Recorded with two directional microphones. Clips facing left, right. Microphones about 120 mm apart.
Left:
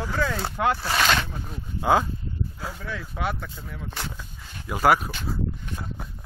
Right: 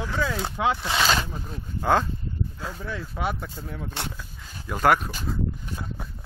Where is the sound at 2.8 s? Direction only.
10° right (ahead or behind).